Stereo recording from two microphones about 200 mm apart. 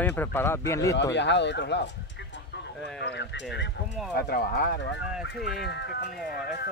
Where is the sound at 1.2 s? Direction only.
60° left (ahead or behind).